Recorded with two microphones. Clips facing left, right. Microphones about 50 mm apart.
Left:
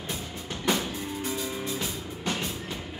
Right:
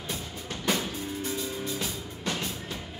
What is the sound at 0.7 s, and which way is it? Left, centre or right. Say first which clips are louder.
Music: left 2 dB; left.